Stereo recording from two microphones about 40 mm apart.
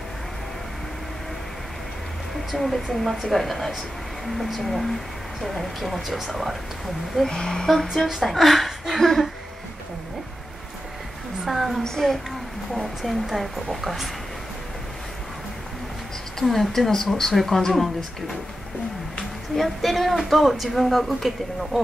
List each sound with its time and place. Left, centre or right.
2.5 s speech: centre
7.2 s speech: centre
7.6 s speech: centre
11.4 s a sound: centre
11.8 s speech: centre
12.7 s speech: centre
16.4 s speech: centre
19.5 s speech: centre